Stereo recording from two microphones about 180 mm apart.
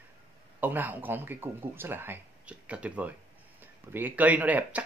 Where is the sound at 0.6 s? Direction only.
10° right (ahead or behind).